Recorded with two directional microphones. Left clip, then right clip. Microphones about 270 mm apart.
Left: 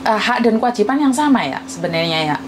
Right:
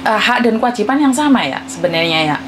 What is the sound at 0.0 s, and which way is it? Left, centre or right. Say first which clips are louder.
A woman's voice: right 2 dB; centre.